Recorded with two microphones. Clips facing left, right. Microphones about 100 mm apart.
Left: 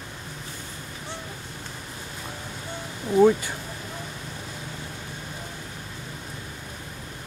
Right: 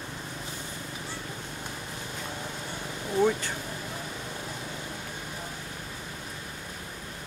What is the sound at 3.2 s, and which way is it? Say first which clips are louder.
Speech: left 7 dB; 10° left (ahead or behind).